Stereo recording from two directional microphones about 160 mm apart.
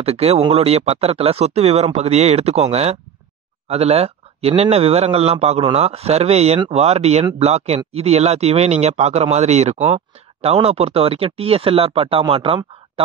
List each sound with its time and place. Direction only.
0.0 s speech: 40° right (ahead or behind)